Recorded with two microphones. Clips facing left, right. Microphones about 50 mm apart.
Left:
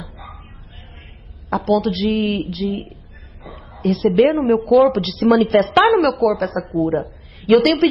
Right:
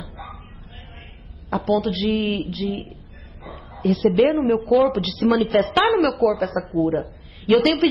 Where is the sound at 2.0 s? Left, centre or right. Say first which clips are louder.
Left 3 dB; left.